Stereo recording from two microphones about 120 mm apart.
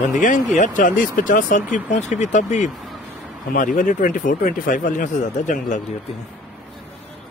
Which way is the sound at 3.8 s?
90° left.